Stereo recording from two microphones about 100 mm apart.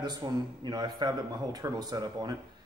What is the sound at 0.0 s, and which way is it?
Speech, 45° right (ahead or behind).